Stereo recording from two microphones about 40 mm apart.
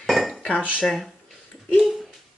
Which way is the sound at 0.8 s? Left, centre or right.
Centre.